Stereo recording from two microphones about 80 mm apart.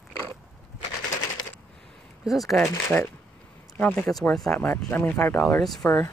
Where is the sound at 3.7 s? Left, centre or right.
Centre.